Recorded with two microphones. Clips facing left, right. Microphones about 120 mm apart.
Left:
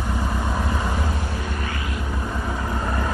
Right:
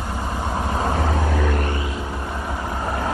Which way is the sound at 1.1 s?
85° right.